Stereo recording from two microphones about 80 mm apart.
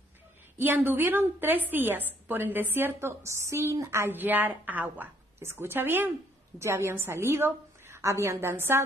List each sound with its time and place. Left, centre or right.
0.6 s a woman's voice: right